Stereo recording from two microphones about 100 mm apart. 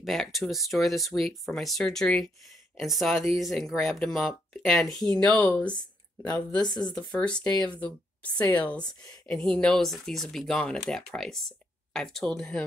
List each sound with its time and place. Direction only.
0.0 s speech: centre (ahead or behind)
6.6 s speech: 45° left (ahead or behind)
6.9 s speech: 10° left (ahead or behind)